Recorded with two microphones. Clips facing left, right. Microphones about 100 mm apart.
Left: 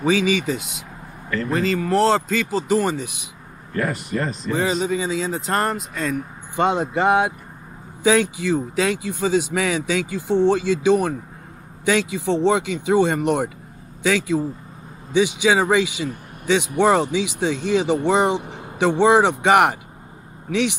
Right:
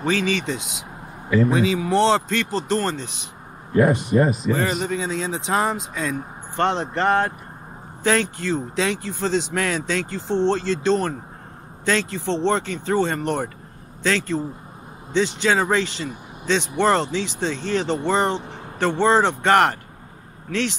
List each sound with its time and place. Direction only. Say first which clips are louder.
0.0 s speech: left 3 dB; 10° left (ahead or behind)
1.3 s speech: right 3 dB; 5° right (ahead or behind)
3.7 s speech: right 7 dB; 20° right (ahead or behind)
4.3 s speech: even; 5° right (ahead or behind)
6.5 s speech: left 2 dB; 10° left (ahead or behind)